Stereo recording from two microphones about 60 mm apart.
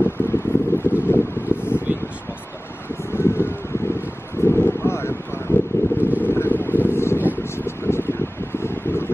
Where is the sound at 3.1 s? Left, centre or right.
Left.